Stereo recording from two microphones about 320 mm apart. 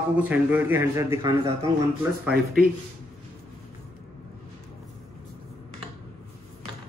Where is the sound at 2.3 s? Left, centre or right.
Right.